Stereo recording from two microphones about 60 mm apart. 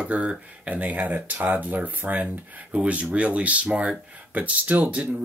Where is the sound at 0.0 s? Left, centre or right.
Centre.